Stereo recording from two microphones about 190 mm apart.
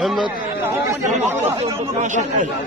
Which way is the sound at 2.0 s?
40° right (ahead or behind).